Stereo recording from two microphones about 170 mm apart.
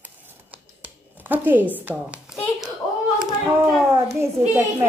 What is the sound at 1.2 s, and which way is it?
A woman's voice, 10° right (ahead or behind).